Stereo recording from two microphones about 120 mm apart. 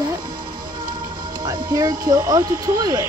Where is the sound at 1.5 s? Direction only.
30° right (ahead or behind).